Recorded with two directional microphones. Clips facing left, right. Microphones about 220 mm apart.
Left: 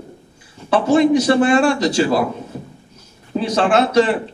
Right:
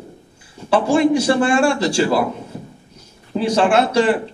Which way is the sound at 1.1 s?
30° right (ahead or behind).